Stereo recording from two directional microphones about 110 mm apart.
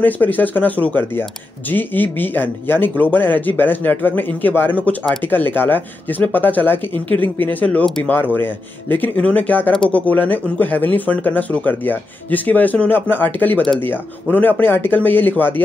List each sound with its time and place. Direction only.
0.0 s speech: 15° left (ahead or behind)